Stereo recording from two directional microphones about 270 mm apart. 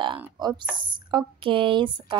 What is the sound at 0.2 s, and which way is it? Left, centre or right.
A woman's voice, centre.